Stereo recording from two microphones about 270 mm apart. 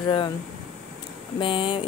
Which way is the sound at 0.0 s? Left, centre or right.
Centre.